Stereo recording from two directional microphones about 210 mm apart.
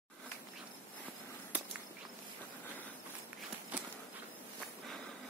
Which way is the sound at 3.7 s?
5° right (ahead or behind).